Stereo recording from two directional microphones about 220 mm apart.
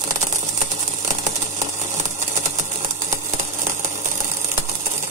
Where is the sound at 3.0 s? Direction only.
15° right (ahead or behind).